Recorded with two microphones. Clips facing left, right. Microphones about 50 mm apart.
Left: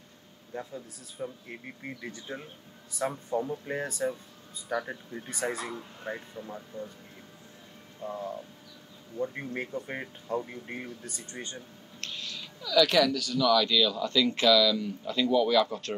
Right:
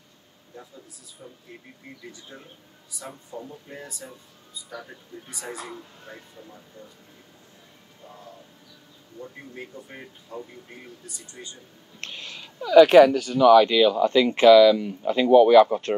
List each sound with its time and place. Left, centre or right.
0.5 s speech: left
6.0 s speech: left
9.1 s speech: left
12.0 s speech: right